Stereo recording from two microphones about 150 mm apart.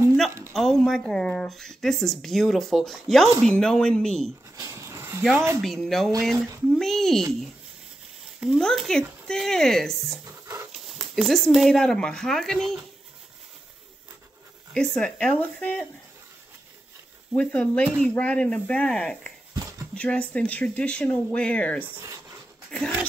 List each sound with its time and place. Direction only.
0.5 s speech: centre (ahead or behind)
4.6 s a sound: 20° right (ahead or behind)
5.3 s speech: 20° right (ahead or behind)
5.6 s speech: centre (ahead or behind)
8.4 s speech: centre (ahead or behind)
14.7 s speech: 5° left (ahead or behind)
17.3 s speech: 10° left (ahead or behind)
19.5 s dog: 20° right (ahead or behind)
19.9 s speech: 10° left (ahead or behind)
21.8 s speech: 15° right (ahead or behind)
22.7 s dog: 5° left (ahead or behind)